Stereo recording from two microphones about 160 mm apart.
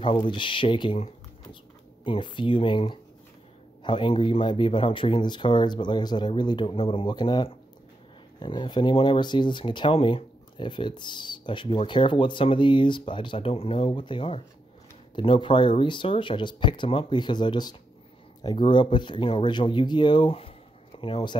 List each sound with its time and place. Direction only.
0.0 s speech: 30° left (ahead or behind)